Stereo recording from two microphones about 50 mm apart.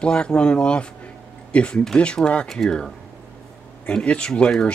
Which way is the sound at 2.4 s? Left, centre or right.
Centre.